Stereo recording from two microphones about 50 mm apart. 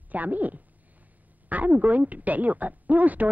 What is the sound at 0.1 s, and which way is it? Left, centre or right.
A woman's voice, right.